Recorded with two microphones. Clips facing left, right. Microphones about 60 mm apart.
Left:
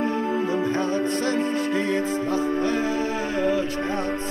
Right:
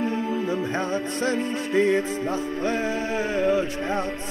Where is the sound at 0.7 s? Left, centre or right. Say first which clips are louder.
Left 3 dB; right.